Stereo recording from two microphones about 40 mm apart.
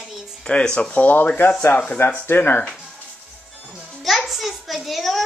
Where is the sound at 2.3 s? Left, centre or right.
Left.